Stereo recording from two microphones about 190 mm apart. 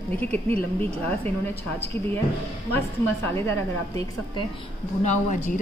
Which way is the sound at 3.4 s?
15° left (ahead or behind).